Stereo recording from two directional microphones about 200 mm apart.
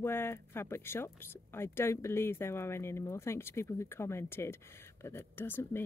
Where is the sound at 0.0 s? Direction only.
10° left (ahead or behind).